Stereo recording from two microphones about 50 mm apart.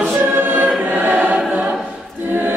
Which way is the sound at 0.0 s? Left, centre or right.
Right.